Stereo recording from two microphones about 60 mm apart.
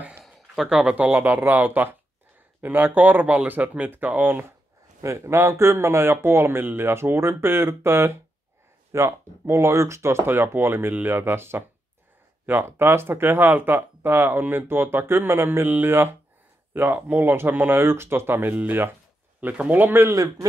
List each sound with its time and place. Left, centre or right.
0.2 s a sound: centre
0.7 s speech: right
5.0 s a man's voice: right